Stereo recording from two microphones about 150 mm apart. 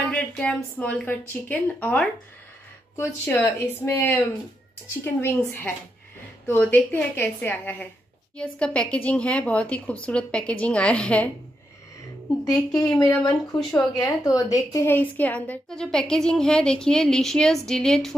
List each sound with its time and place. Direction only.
0.7 s a woman's voice: 10° left (ahead or behind)
12.4 s speech: 25° left (ahead or behind)
13.6 s a woman's voice: 5° left (ahead or behind)
13.9 s a woman's voice: 25° left (ahead or behind); by 18.1 s 5° left (ahead or behind)